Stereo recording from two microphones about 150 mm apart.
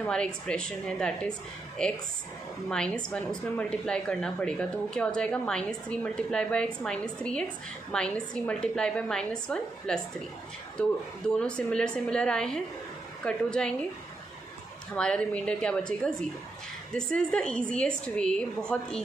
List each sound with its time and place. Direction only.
0.0 s a woman's voice: 5° left (ahead or behind)
15.0 s a woman's voice: 5° left (ahead or behind)